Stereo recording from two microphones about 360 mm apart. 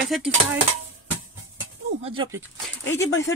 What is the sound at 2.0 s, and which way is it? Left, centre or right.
Speech, centre.